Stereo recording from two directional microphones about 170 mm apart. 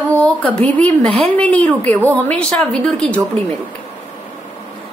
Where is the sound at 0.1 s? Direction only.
5° left (ahead or behind).